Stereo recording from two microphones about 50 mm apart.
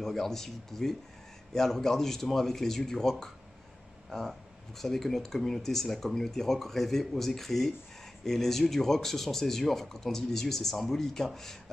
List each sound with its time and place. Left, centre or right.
0.0 s speech: centre